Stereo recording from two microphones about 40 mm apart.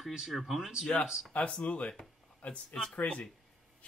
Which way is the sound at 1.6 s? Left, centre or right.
Left.